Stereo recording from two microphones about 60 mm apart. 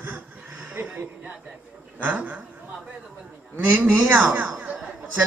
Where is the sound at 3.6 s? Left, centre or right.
Right.